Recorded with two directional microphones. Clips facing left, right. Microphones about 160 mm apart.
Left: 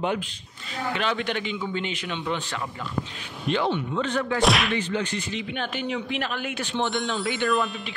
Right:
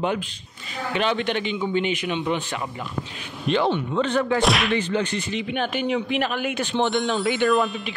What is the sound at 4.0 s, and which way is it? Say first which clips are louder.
Speech: right 6 dB; 25° right (ahead or behind).